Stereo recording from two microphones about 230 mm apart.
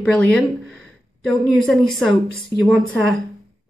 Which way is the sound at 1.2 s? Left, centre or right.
Centre.